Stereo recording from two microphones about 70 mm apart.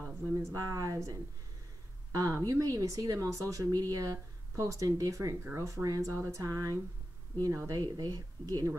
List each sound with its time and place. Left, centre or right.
0.3 s speech: right
0.6 s speech: right